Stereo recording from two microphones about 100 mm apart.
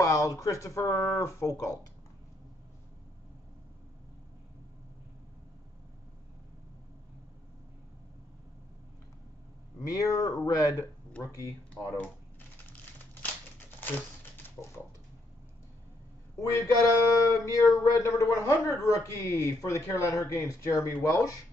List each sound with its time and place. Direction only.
0.0 s speech: 35° left (ahead or behind)
9.8 s speech: 35° left (ahead or behind)
13.2 s a sound: 20° left (ahead or behind)
16.3 s a man's voice: 35° left (ahead or behind)